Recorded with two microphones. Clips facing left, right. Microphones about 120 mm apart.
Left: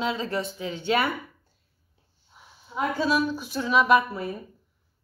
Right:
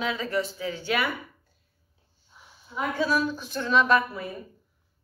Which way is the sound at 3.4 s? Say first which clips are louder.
Left 1 dB; 10° left (ahead or behind).